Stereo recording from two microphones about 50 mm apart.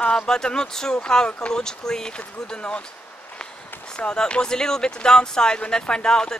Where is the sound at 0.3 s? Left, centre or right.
Centre.